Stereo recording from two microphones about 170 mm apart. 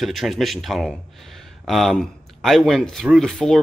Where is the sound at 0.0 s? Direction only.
Centre (ahead or behind).